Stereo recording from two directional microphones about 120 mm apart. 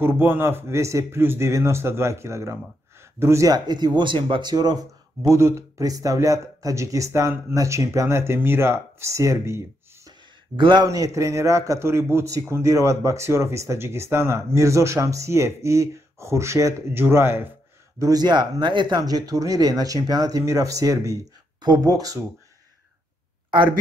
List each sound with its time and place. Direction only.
0.0 s speech: 20° right (ahead or behind)
10.0 s speech: 40° right (ahead or behind); by 17.5 s 20° right (ahead or behind)
17.9 s speech: 30° right (ahead or behind)